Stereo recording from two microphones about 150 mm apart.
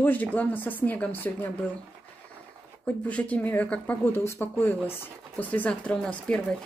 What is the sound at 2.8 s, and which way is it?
Speech, 10° left (ahead or behind).